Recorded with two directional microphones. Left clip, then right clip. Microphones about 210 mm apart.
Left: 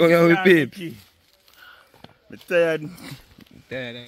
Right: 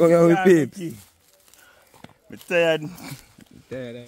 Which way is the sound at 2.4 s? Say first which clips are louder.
Even; 30° right (ahead or behind).